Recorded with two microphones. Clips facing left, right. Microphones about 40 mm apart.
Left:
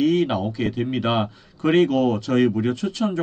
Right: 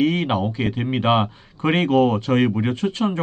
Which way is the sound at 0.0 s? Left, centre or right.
Right.